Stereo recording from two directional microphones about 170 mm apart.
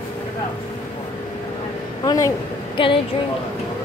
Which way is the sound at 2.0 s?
20° left (ahead or behind).